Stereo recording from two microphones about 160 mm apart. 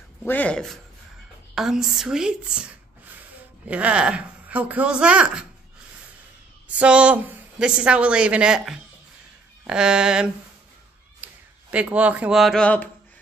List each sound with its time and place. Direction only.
0.2 s a woman's voice: 10° left (ahead or behind); by 5.4 s 5° right (ahead or behind)
6.7 s a woman's voice: 10° right (ahead or behind)
11.2 s a sound: 10° right (ahead or behind)
11.7 s a woman's voice: 10° right (ahead or behind); by 12.9 s 10° left (ahead or behind)